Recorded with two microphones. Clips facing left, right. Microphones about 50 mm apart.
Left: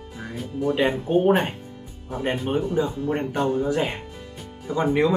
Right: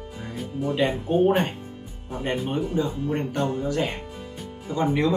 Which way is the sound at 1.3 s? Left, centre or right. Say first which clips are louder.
Left 2 dB; centre.